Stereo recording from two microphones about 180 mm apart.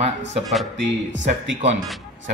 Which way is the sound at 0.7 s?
90° right.